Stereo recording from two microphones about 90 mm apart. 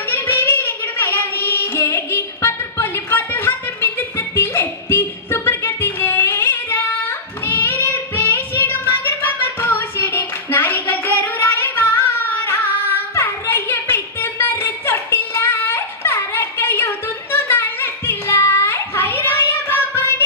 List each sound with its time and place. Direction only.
0.1 s carnatic music: 25° left (ahead or behind)
4.4 s music: 25° left (ahead or behind)
7.4 s child singing: 20° left (ahead or behind)